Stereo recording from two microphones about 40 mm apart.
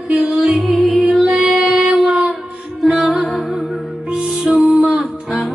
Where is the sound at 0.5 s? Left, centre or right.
Centre.